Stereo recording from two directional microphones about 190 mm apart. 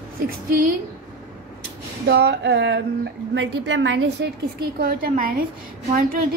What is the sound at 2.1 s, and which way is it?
A woman's voice, 70° right (ahead or behind).